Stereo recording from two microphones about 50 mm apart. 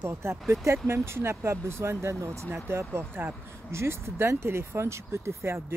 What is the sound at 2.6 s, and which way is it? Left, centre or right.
Speech, right.